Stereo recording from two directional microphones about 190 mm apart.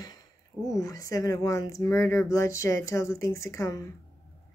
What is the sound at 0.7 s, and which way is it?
Speech, 15° left (ahead or behind).